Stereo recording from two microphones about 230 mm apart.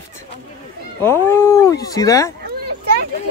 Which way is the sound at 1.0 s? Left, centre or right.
Centre.